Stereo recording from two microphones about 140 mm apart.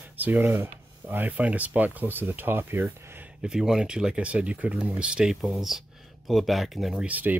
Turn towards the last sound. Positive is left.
turn(degrees=-10)  # may be behind; listen again after turning